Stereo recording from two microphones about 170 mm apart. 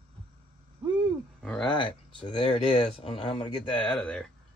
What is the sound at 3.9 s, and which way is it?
Speech, 5° left (ahead or behind).